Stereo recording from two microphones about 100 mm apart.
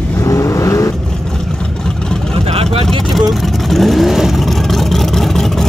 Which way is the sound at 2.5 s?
75° right (ahead or behind).